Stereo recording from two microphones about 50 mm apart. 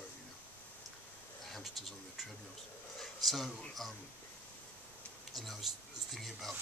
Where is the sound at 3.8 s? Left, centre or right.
Centre.